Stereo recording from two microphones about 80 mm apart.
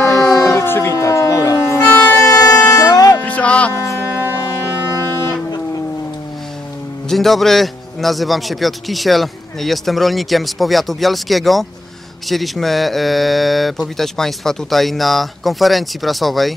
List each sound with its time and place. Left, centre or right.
0.0 s a sound: left
1.9 s vehicle: left
2.2 s vehicle: left
2.7 s music: left
3.2 s music: centre
3.7 s a sound: left
7.1 s a man's voice: centre